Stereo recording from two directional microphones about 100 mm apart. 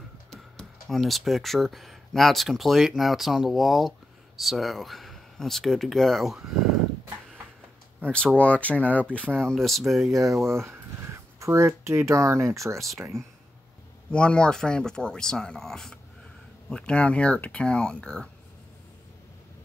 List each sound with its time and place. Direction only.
0.3 s speech: 5° left (ahead or behind)
8.4 s speech: 15° left (ahead or behind)
9.4 s speech: 5° left (ahead or behind)
10.1 s speech: 35° right (ahead or behind)
14.1 s speech: 10° left (ahead or behind)